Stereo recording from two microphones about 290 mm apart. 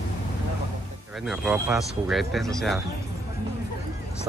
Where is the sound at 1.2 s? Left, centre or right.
Centre.